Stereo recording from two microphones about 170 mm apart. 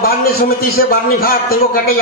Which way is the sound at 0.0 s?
60° left (ahead or behind).